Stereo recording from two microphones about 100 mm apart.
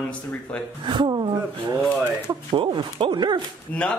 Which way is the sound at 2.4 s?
55° right (ahead or behind).